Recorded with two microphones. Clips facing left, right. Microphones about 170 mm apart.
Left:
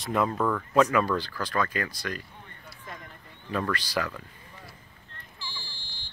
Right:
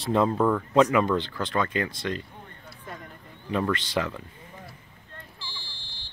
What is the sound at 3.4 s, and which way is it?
Speech, 20° right (ahead or behind).